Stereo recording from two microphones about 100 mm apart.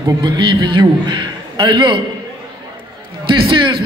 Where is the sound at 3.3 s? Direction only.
55° right (ahead or behind).